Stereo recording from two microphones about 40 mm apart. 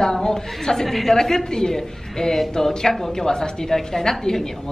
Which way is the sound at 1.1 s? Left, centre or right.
Centre.